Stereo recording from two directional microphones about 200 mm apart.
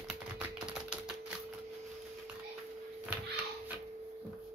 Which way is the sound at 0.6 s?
5° right (ahead or behind).